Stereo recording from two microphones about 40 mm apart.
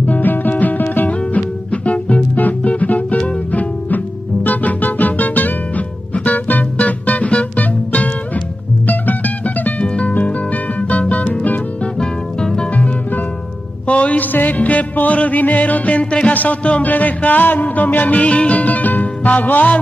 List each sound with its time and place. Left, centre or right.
0.0 s music: left
2.3 s music: left
11.8 s music: left
12.7 s music: left
16.3 s speech: left
16.9 s music: left